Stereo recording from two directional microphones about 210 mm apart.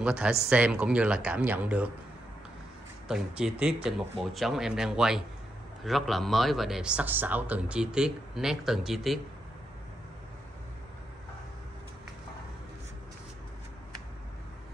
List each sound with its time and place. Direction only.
0.0 s a man's voice: 5° right (ahead or behind)
3.1 s a man's voice: 5° right (ahead or behind)